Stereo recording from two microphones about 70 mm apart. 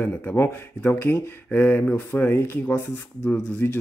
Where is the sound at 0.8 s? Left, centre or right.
Left.